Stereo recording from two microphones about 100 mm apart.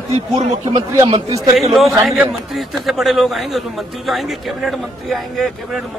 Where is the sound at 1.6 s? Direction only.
Centre (ahead or behind).